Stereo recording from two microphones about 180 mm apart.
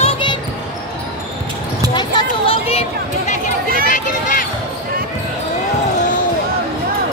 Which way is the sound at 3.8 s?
45° left (ahead or behind).